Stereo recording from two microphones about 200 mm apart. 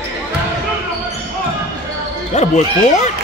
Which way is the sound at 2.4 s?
35° left (ahead or behind).